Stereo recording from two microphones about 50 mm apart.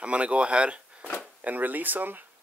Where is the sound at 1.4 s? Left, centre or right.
Right.